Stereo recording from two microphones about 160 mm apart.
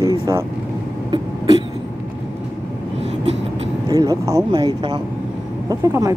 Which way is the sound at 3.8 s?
20° right (ahead or behind).